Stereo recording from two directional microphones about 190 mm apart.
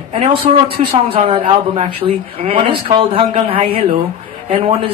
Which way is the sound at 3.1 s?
30° right (ahead or behind).